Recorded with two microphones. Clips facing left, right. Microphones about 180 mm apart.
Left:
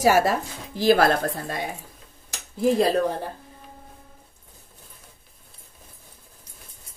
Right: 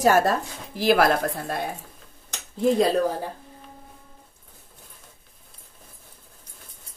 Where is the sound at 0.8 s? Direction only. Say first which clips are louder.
Left 1 dB; 30° left (ahead or behind).